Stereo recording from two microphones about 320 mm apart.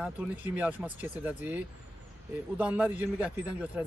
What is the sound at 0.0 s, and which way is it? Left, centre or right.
A man's voice, centre.